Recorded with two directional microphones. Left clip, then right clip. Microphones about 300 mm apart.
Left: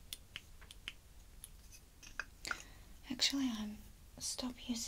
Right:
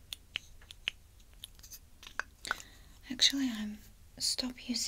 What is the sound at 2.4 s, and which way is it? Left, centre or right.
Chewing, centre.